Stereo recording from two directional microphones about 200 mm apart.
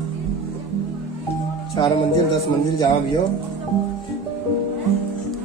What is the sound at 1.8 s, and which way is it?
Speech, 25° left (ahead or behind).